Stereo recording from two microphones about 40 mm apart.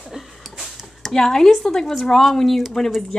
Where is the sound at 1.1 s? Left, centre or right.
Centre.